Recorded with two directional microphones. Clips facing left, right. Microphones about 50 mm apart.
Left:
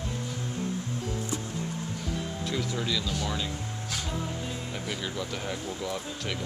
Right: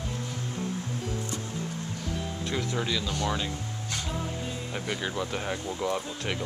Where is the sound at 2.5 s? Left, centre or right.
Centre.